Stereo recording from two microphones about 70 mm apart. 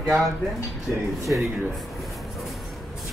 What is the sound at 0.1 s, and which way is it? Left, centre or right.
Speech, right.